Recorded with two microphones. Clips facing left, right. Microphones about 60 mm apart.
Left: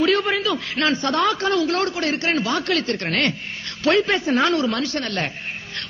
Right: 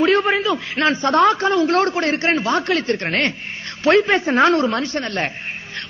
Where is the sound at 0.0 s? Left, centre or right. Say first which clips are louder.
Right 3 dB; right.